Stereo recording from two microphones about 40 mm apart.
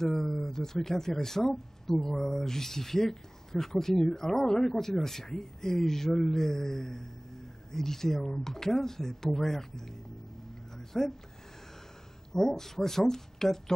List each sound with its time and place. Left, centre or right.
0.0 s speech: centre
10.8 s a sound: centre
12.3 s speech: centre